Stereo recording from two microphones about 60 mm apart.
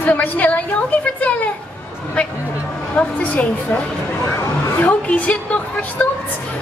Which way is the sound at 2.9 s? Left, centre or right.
Left.